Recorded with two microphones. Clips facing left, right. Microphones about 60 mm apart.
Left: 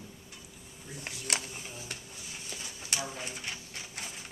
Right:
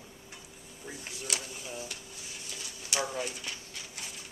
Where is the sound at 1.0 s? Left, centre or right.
Left.